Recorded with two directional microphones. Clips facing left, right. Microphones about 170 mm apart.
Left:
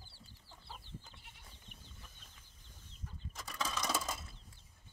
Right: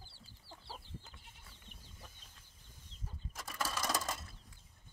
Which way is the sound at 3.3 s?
5° right (ahead or behind).